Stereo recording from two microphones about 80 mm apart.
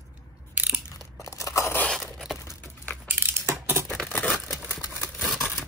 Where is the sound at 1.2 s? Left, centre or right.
Left.